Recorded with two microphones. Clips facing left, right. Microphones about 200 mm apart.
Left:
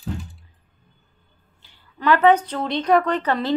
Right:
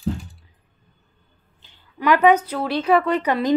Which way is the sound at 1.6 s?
15° right (ahead or behind).